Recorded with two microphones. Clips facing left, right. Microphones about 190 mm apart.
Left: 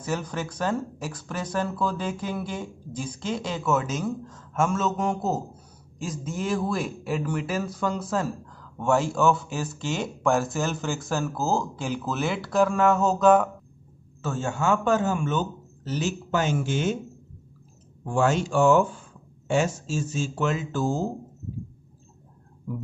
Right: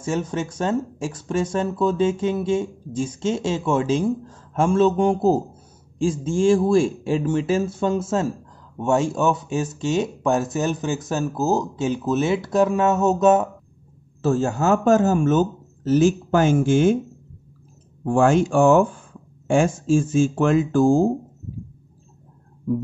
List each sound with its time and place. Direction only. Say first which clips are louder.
0.0 s speech: right 5 dB; 25° right (ahead or behind)
14.2 s speech: right 7 dB; 35° right (ahead or behind)
18.0 s speech: right 6 dB; 55° right (ahead or behind)